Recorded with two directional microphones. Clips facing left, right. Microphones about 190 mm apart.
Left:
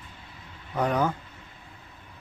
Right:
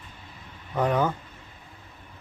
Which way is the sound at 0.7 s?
Centre (ahead or behind).